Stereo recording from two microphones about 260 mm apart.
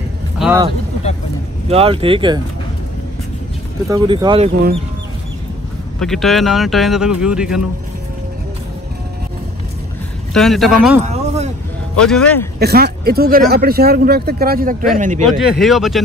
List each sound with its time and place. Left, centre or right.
0.4 s speech: centre
1.7 s speech: right
3.9 s speech: centre
5.9 s speech: centre
10.3 s speech: centre
11.1 s a sound: right
12.1 s speech: centre
12.5 s speech: right
15.2 s speech: centre